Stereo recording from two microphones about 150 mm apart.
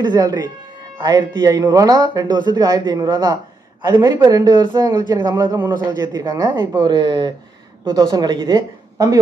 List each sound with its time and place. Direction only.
0.0 s speech: 25° right (ahead or behind)